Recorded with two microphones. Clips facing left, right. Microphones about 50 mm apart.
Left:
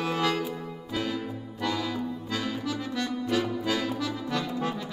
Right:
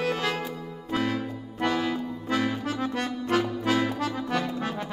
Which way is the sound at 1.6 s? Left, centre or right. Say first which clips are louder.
Right 3 dB; right.